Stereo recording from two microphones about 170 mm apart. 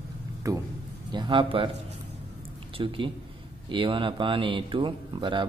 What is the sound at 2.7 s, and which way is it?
Speech, 30° right (ahead or behind).